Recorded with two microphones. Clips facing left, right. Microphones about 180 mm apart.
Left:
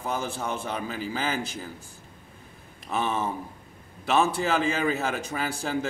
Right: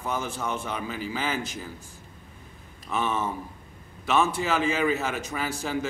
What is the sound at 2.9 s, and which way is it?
Speech, 35° left (ahead or behind).